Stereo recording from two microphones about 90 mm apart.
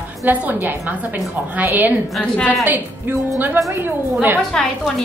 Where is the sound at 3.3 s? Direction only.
20° right (ahead or behind).